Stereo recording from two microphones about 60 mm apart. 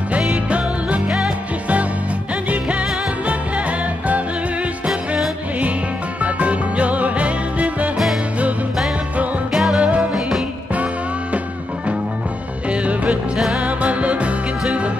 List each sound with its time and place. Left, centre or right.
0.3 s music: right
6.2 s music: right
9.5 s music: centre
12.8 s music: right